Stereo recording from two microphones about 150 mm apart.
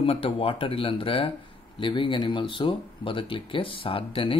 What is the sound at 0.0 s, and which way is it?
Speech, 40° left (ahead or behind).